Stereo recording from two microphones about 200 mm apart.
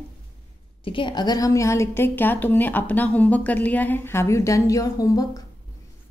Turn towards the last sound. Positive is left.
turn(degrees=20)  # may be behind; listen again after turning